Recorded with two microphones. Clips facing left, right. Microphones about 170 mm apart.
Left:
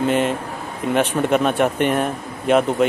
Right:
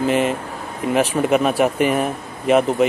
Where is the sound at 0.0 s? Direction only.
Centre (ahead or behind).